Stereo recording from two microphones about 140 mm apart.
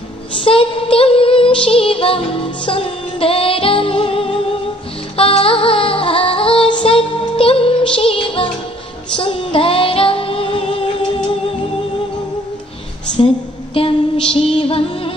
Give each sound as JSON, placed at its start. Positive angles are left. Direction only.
{"t": 0.4, "sound": "music", "side_deg": 40}
{"t": 9.1, "sound": "child singing", "side_deg": 35}
{"t": 13.7, "sound": "a sound", "side_deg": 40}
{"t": 14.6, "sound": "music", "side_deg": 40}